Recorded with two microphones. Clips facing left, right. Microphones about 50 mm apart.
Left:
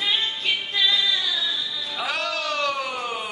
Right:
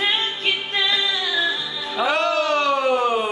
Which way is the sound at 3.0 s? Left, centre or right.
Right.